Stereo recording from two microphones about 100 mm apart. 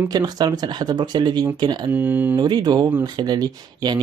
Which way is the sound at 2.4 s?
45° right (ahead or behind).